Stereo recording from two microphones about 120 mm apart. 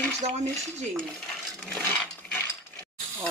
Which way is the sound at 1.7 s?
15° left (ahead or behind).